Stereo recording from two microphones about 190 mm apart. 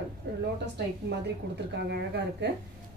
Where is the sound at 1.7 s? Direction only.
60° right (ahead or behind).